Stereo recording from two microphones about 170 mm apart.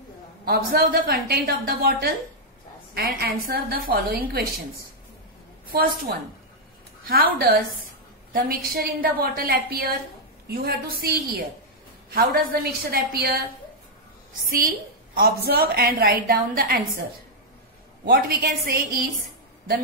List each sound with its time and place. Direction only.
0.5 s a woman's voice: 60° right (ahead or behind)
5.7 s a woman's voice: 60° right (ahead or behind)
15.1 s a woman's voice: 65° right (ahead or behind)
18.0 s a woman's voice: 60° right (ahead or behind)